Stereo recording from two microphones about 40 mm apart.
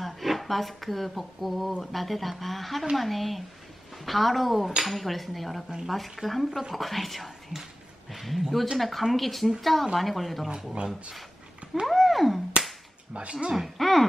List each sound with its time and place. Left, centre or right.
0.0 s speech: centre
11.8 s a sound: centre
13.3 s speech: centre
13.6 s speech: centre